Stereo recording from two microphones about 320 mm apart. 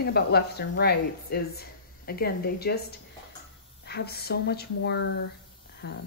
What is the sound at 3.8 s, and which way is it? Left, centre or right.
A woman's voice, left.